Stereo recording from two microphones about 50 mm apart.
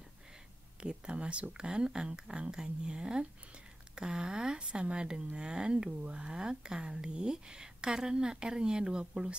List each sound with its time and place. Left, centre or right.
0.7 s speech: centre